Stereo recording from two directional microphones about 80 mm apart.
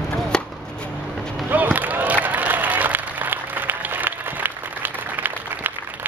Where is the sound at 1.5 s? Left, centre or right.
Right.